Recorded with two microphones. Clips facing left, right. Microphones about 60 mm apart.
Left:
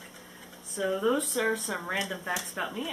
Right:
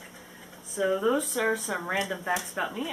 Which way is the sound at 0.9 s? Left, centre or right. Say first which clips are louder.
Even; centre.